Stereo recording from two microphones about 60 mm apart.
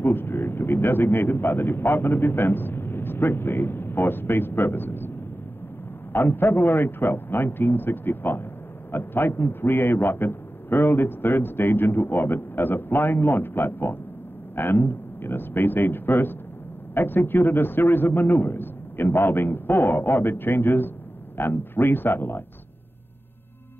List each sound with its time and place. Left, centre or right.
0.0 s speech: left
6.1 s speech: left